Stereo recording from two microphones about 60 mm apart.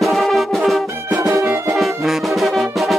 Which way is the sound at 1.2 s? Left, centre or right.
Right.